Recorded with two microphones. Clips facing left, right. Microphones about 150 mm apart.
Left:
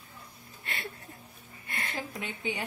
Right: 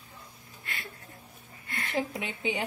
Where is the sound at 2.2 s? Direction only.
15° right (ahead or behind).